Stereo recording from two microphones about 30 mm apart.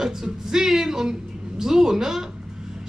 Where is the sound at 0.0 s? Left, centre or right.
Centre.